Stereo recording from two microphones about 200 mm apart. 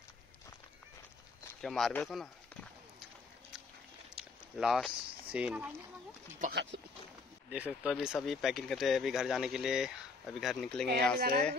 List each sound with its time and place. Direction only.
1.6 s speech: centre (ahead or behind)
4.1 s a sound: centre (ahead or behind)
6.5 s speech: 65° right (ahead or behind)
7.4 s speech: 5° right (ahead or behind)
11.1 s speech: 50° right (ahead or behind)